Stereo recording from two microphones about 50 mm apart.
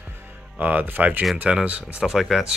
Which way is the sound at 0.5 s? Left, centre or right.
Right.